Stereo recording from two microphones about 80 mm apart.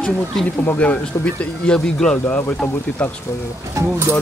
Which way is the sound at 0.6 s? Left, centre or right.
Left.